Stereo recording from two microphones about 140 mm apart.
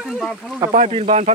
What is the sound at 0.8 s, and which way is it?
Speech, 50° right (ahead or behind).